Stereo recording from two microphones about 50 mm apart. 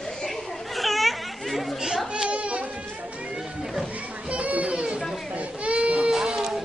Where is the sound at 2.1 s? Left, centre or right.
Right.